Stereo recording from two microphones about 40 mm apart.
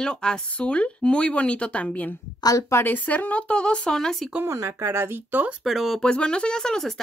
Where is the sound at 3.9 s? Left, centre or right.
Centre.